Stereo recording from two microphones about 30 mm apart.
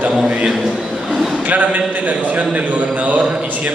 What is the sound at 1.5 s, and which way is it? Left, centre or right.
Speech, right.